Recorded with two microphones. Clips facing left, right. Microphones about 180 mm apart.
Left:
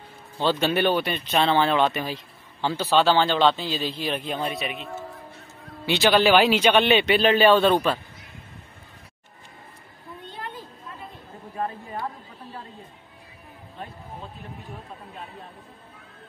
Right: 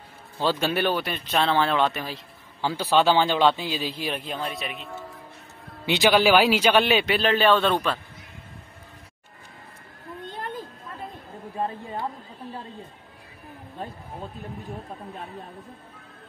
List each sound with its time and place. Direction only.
0.4 s a man's voice: 5° right (ahead or behind)
5.9 s a man's voice: 10° right (ahead or behind); by 8.0 s 5° left (ahead or behind)
11.5 s speech: 25° right (ahead or behind)